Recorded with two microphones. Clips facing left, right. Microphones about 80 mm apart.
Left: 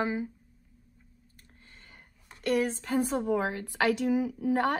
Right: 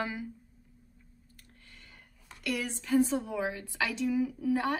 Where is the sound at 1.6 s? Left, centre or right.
Left.